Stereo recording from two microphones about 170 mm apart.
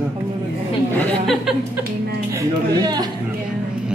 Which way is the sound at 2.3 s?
25° right (ahead or behind).